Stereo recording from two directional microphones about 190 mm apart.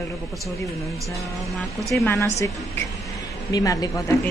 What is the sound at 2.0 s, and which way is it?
Speech, 15° left (ahead or behind).